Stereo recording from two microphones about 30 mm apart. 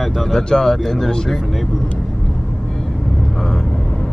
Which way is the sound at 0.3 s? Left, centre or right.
Centre.